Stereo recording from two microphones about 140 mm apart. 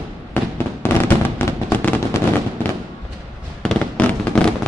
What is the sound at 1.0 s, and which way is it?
Fireworks, 15° left (ahead or behind).